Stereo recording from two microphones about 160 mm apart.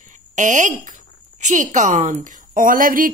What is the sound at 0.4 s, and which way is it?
A woman's voice, 50° right (ahead or behind).